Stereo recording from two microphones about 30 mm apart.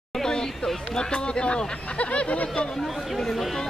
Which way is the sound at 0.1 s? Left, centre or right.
Centre.